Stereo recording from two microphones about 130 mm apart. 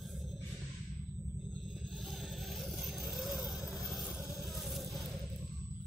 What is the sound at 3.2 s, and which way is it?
Vehicle, 5° right (ahead or behind).